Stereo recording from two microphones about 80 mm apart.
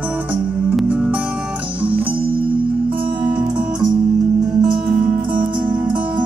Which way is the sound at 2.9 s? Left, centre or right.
Centre.